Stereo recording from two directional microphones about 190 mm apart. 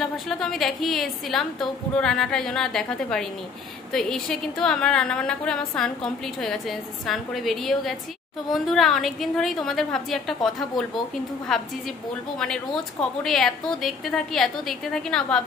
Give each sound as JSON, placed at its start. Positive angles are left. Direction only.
{"t": 0.0, "sound": "a woman's voice", "side_deg": 0}
{"t": 13.2, "sound": "a woman's voice", "side_deg": 0}